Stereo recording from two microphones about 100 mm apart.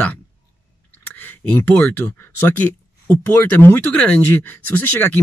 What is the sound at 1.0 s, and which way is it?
Speech, 20° left (ahead or behind).